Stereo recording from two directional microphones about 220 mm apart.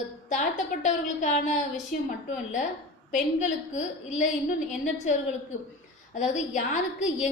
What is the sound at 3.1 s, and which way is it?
A woman's voice, 35° left (ahead or behind).